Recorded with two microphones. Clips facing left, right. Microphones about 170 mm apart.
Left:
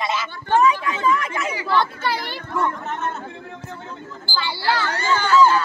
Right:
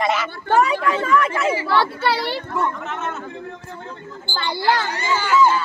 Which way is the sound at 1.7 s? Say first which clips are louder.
Left 2 dB; 65° right (ahead or behind).